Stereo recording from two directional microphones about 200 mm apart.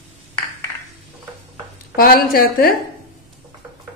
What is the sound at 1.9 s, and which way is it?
Speech, 50° left (ahead or behind).